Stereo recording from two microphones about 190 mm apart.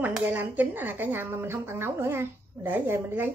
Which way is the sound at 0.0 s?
10° right (ahead or behind).